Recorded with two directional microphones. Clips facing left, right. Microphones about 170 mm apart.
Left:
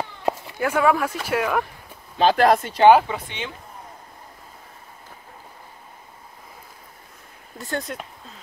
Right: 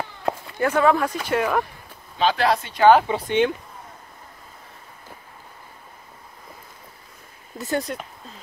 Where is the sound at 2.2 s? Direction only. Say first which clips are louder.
Left 4 dB; 45° left (ahead or behind).